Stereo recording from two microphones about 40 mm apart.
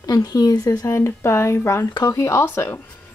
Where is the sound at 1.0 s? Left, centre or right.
Left.